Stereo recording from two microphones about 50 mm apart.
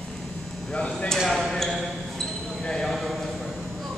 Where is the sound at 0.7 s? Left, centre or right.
Centre.